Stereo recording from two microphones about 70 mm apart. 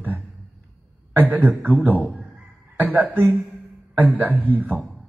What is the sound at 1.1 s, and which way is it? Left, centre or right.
A man's voice, right.